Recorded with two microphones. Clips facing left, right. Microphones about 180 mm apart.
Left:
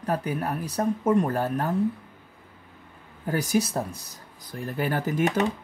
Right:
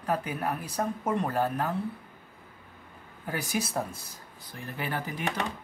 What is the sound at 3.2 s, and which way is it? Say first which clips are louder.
Speech: left 7 dB; 40° left (ahead or behind).